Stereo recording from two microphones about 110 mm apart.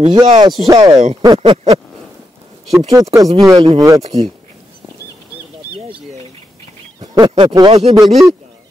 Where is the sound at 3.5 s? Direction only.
50° right (ahead or behind).